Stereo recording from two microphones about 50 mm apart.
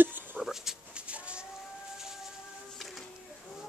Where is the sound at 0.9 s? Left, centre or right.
Right.